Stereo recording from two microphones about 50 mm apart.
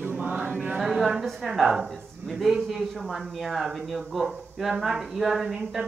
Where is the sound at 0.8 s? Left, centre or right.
Centre.